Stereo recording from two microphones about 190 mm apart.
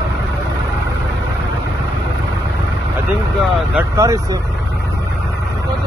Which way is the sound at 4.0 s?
15° right (ahead or behind).